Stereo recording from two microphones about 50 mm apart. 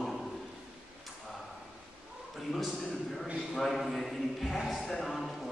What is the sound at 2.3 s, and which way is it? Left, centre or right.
A man's voice, centre.